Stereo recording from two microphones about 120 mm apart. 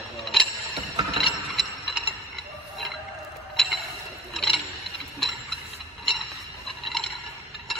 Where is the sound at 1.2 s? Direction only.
Centre (ahead or behind).